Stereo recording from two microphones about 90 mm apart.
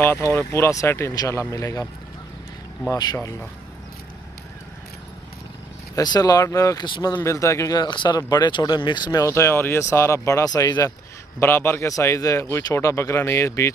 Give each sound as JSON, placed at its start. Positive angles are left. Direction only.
{"t": 0.0, "sound": "speech", "side_deg": 25}
{"t": 1.1, "sound": "speech", "side_deg": 45}
{"t": 2.9, "sound": "speech", "side_deg": 45}
{"t": 5.9, "sound": "speech", "side_deg": 45}
{"t": 7.2, "sound": "speech", "side_deg": 35}
{"t": 7.7, "sound": "speech", "side_deg": 55}
{"t": 8.5, "sound": "speech", "side_deg": 65}
{"t": 9.2, "sound": "speech", "side_deg": 30}
{"t": 11.3, "sound": "speech", "side_deg": 25}